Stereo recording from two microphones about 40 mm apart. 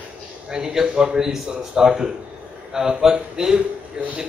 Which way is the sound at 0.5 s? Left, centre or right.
Centre.